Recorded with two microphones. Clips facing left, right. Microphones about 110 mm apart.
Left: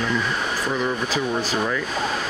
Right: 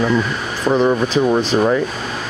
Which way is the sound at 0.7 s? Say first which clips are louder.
Right 12 dB; 40° right (ahead or behind).